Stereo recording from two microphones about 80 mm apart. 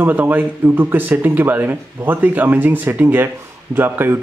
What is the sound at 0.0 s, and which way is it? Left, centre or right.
Speech, right.